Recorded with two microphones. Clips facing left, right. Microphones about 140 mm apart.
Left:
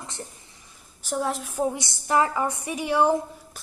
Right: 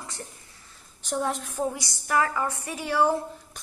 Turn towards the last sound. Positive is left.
turn(degrees=5)  # may be behind; listen again after turning